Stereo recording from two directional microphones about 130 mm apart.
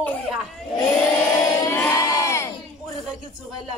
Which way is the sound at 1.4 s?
25° left (ahead or behind).